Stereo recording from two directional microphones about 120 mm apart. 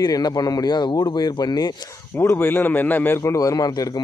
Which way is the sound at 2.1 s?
20° left (ahead or behind).